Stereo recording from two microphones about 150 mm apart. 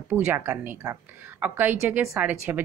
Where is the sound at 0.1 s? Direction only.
15° right (ahead or behind).